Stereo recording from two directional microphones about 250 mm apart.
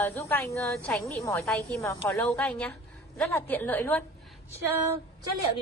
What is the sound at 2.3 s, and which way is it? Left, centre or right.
A woman's voice, centre.